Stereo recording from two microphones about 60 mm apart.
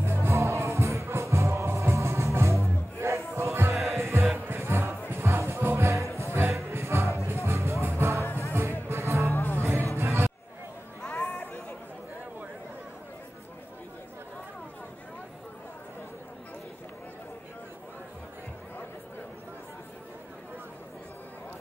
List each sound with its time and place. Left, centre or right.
0.0 s music: right
8.2 s music: left
8.8 s music: right
9.3 s music: left
9.6 s music: right
11.1 s chatter: left